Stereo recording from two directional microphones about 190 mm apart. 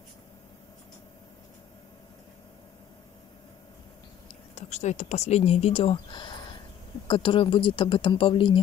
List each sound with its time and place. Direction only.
4.6 s speech: 35° left (ahead or behind)